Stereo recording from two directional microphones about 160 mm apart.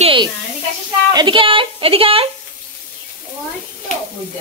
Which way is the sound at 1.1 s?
30° right (ahead or behind).